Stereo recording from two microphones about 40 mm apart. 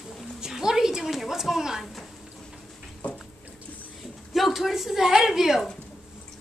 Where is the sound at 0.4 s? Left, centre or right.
Centre.